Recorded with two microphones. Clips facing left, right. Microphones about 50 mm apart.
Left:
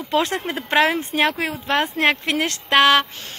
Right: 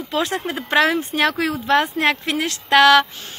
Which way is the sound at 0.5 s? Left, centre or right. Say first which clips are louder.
Right 2 dB; left.